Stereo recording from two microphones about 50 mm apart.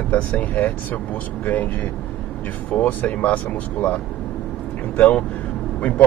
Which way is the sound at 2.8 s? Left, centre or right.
Left.